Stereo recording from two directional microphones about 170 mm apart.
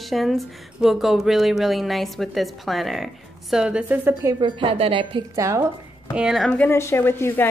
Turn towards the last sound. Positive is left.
turn(degrees=15)  # may be behind; listen again after turning